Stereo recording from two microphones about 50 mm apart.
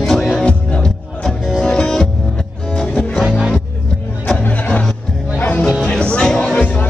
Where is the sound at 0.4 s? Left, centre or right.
Left.